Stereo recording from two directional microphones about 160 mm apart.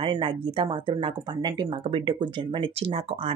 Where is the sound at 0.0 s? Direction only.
30° right (ahead or behind).